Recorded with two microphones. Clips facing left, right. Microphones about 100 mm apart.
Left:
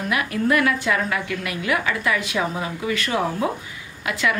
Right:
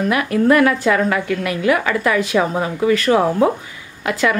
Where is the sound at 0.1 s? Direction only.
45° right (ahead or behind).